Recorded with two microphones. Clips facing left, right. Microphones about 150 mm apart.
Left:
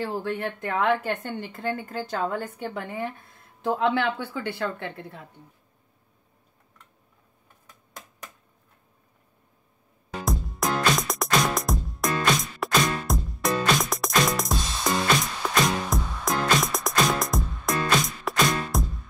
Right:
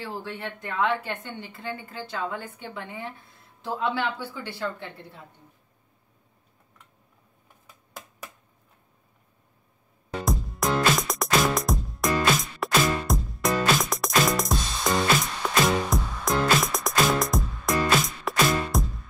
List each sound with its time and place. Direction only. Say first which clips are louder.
0.0 s a woman's voice: left 6 dB; 50° left (ahead or behind)
10.2 s music: even; centre (ahead or behind)